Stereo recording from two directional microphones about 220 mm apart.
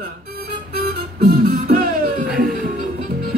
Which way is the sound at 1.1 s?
40° right (ahead or behind).